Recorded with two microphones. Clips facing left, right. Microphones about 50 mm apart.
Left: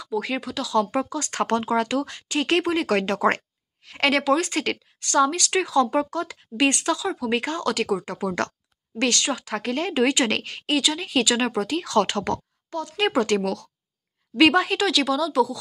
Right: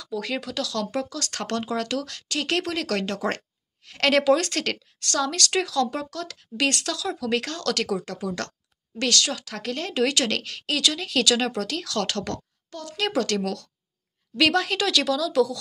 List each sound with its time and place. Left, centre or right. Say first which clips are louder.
0.0 s speech: left 3 dB; centre
0.7 s a woman's voice: left 9 dB; left
4.1 s speech: right 2 dB; centre
5.7 s a woman's voice: left 5 dB; left
8.2 s a woman's voice: left 5 dB; left
10.8 s a woman's voice: even; centre; by 14.6 s left
14.6 s speech: left 2 dB; centre